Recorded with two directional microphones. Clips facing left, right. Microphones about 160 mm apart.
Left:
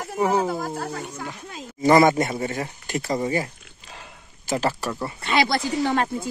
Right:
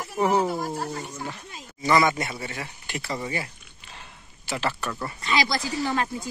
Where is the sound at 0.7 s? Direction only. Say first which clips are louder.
Left 1 dB; 60° left (ahead or behind).